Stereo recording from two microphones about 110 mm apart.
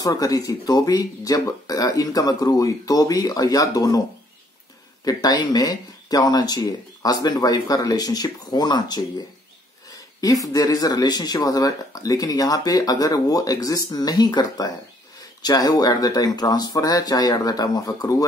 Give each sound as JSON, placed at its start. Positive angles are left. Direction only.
{"t": 0.0, "sound": "speech", "side_deg": 35}
{"t": 5.0, "sound": "speech", "side_deg": 35}
{"t": 10.2, "sound": "speech", "side_deg": 30}